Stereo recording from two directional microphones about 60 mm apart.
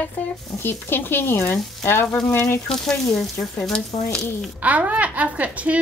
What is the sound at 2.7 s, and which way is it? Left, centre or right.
Speech, centre.